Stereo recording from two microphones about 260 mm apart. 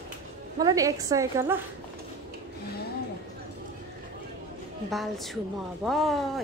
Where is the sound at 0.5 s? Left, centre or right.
Centre.